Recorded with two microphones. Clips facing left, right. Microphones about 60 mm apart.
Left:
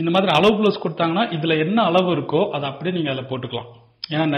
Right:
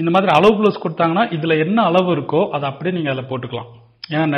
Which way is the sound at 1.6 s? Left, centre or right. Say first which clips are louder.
Right 2 dB; centre.